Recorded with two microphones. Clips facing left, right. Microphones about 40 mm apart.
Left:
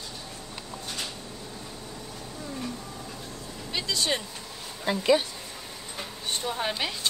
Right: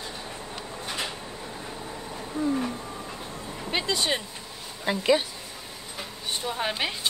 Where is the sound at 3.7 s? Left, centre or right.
Right.